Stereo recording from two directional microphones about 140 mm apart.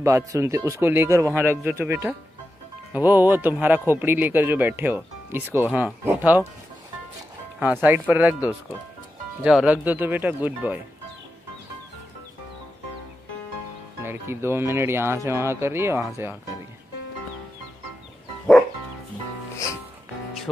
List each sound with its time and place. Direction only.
0.0 s a man's voice: 20° right (ahead or behind)
7.6 s a man's voice: 15° right (ahead or behind)
14.0 s a man's voice: 15° right (ahead or behind)